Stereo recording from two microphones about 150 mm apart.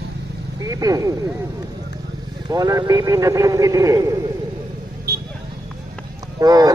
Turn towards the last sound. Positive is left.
turn(degrees=-25)  # may be behind; listen again after turning